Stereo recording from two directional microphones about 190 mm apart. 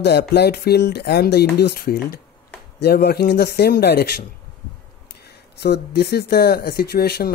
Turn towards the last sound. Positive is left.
turn(degrees=55)  # may be behind; listen again after turning